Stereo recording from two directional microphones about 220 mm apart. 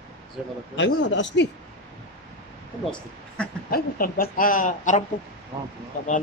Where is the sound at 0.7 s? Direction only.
55° left (ahead or behind).